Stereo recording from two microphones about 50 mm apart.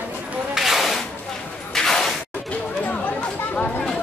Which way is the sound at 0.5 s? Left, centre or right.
Centre.